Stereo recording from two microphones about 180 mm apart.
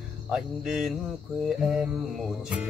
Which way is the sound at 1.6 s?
5° right (ahead or behind).